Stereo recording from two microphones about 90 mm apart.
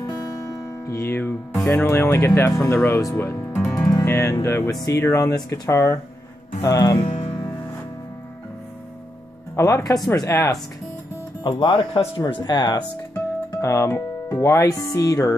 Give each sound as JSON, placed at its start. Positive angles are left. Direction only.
{"t": 0.8, "sound": "speech", "side_deg": 30}
{"t": 5.0, "sound": "speech", "side_deg": 30}
{"t": 7.0, "sound": "music", "side_deg": 65}
{"t": 9.6, "sound": "speech", "side_deg": 35}
{"t": 11.4, "sound": "speech", "side_deg": 45}
{"t": 11.9, "sound": "speech", "side_deg": 70}
{"t": 12.3, "sound": "speech", "side_deg": 55}
{"t": 13.6, "sound": "speech", "side_deg": 35}